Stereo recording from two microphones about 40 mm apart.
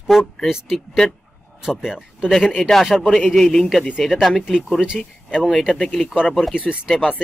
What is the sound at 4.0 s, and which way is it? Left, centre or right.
Speech, centre.